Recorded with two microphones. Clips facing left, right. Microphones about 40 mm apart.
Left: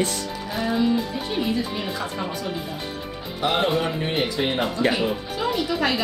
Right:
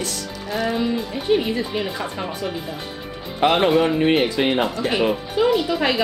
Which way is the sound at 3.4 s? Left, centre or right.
Right.